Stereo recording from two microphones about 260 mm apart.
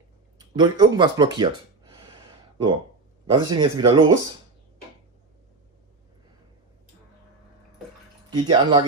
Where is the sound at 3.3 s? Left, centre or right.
Centre.